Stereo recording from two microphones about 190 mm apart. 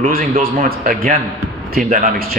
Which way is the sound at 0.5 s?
50° right (ahead or behind).